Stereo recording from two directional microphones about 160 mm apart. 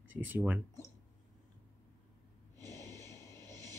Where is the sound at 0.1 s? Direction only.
10° right (ahead or behind).